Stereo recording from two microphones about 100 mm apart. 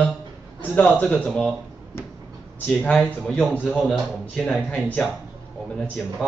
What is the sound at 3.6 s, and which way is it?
Speech, 15° left (ahead or behind).